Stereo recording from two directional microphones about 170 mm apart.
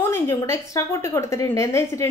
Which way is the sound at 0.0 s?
15° left (ahead or behind).